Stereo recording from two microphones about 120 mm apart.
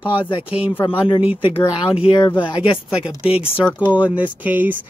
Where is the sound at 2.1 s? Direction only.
40° left (ahead or behind).